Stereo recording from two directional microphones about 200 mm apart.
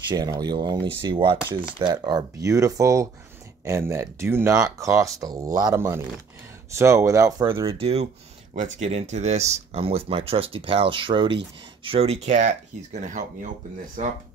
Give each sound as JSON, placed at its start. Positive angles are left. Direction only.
{"t": 0.1, "sound": "speech", "side_deg": -20}